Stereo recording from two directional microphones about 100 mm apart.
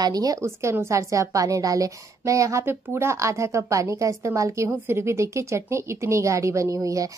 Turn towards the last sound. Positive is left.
turn(degrees=-35)  # may be behind; listen again after turning